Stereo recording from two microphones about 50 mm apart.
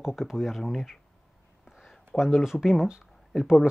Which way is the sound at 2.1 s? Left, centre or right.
Centre.